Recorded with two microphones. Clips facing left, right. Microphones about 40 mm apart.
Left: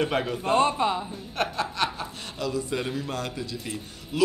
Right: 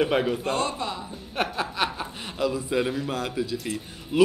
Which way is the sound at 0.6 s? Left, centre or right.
Left.